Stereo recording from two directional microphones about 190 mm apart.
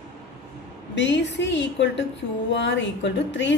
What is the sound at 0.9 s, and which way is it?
A woman's voice, 70° left (ahead or behind).